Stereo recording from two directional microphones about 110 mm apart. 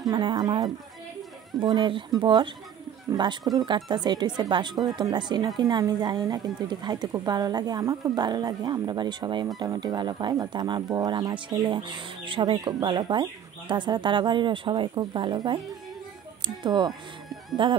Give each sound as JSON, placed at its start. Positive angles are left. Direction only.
{"t": 0.0, "sound": "speech", "side_deg": -40}